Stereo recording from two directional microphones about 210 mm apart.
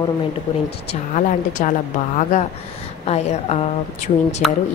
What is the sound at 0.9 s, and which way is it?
A woman's voice, 35° left (ahead or behind).